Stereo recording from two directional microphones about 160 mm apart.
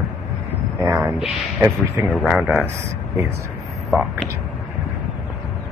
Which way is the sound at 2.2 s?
Centre (ahead or behind).